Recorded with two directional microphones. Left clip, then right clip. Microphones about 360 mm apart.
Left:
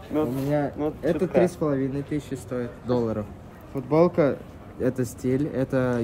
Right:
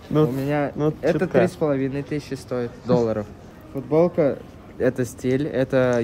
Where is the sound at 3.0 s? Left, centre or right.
Centre.